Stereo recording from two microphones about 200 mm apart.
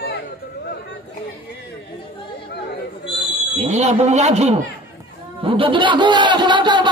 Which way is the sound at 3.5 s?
35° right (ahead or behind).